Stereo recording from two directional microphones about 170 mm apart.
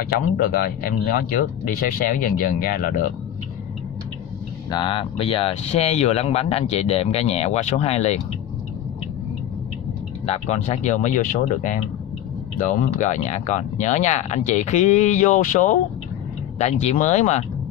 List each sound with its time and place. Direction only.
0.1 s speech: 60° left (ahead or behind)
4.6 s speech: 30° left (ahead or behind)
10.2 s speech: 35° left (ahead or behind)